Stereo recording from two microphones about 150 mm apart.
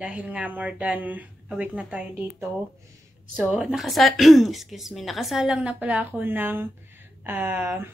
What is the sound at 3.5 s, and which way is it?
Speech, 5° right (ahead or behind).